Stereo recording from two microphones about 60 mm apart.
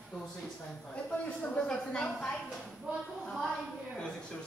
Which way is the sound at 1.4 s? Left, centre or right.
Centre.